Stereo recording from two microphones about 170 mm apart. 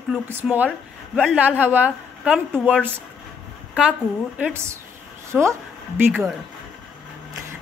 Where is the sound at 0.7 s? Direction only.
Centre (ahead or behind).